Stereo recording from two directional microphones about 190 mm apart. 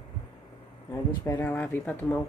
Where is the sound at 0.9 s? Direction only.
15° left (ahead or behind).